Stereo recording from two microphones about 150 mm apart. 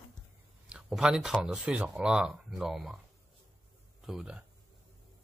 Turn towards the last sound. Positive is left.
turn(degrees=-5)  # may be behind; listen again after turning